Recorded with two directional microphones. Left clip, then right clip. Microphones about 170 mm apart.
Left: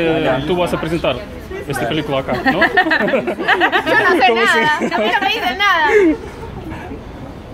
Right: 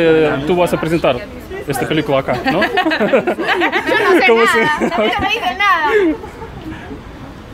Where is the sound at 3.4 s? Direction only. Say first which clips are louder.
Left 1 dB; 25° left (ahead or behind).